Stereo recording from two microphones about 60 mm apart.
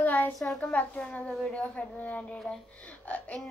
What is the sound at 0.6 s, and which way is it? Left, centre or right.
A woman's voice, left.